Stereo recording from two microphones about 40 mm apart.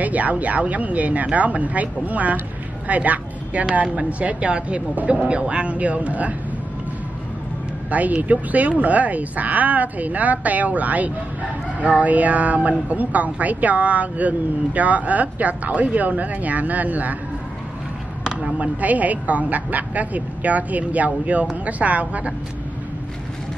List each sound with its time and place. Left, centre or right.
0.0 s a woman's voice: right
3.8 s a woman's voice: right
7.9 s a woman's voice: right
18.2 s chop: right
18.6 s a woman's voice: right